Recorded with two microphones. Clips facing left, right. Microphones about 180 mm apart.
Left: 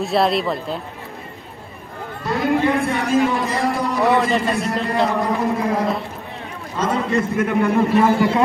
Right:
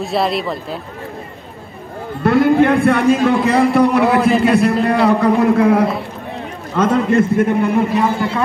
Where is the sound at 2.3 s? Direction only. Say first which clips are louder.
Right 7 dB; 65° right (ahead or behind).